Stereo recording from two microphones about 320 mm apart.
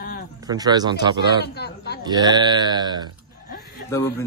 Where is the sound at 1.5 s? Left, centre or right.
Left.